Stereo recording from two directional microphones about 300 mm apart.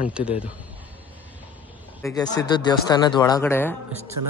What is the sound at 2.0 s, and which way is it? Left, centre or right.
Speech, centre.